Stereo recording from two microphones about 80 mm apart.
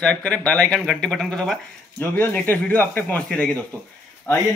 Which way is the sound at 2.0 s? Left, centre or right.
Left.